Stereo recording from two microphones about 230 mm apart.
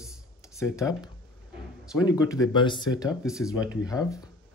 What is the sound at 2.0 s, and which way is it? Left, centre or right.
Speech, centre.